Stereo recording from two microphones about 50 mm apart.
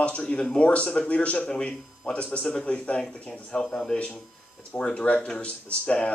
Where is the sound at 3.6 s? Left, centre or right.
Centre.